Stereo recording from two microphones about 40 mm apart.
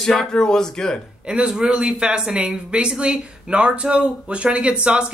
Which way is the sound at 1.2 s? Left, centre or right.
Right.